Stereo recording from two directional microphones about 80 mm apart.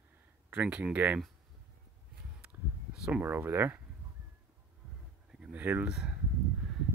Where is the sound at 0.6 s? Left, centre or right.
Centre.